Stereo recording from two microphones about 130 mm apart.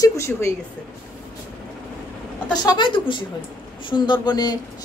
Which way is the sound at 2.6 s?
35° left (ahead or behind).